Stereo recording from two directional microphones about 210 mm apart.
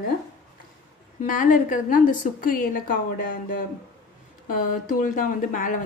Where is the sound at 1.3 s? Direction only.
40° left (ahead or behind).